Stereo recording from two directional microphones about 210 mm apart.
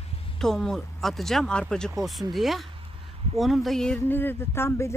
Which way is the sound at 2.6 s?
25° right (ahead or behind).